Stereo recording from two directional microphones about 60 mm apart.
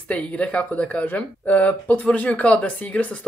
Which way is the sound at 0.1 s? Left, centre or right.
Left.